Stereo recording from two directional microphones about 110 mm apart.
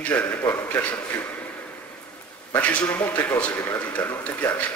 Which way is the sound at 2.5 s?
10° left (ahead or behind).